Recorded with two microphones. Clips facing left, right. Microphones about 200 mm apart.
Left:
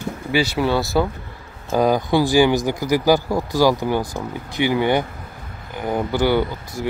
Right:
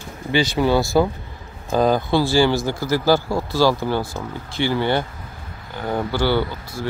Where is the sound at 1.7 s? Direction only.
10° left (ahead or behind).